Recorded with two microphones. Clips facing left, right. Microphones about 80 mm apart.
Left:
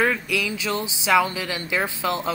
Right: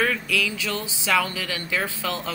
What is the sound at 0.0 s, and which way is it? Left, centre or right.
Speech, centre.